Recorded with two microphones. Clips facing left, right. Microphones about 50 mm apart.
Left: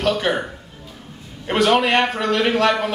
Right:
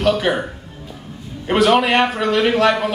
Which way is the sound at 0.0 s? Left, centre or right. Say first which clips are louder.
Right 3 dB; centre.